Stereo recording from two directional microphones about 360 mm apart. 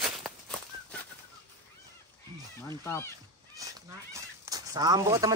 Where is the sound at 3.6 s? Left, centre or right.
Centre.